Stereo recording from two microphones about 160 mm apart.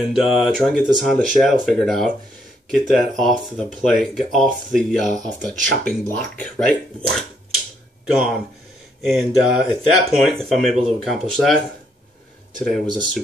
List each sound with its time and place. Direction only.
0.0 s speech: centre (ahead or behind)
12.8 s speech: 25° right (ahead or behind)